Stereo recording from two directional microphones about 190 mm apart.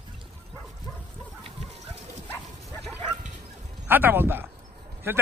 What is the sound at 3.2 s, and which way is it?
Dog, 55° right (ahead or behind).